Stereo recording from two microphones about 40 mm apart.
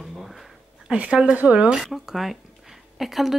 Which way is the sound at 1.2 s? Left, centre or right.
Right.